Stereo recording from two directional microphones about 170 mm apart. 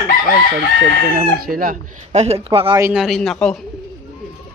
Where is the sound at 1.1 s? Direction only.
60° right (ahead or behind).